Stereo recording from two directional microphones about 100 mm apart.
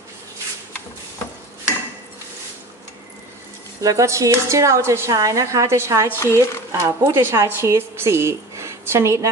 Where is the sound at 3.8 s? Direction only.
35° right (ahead or behind).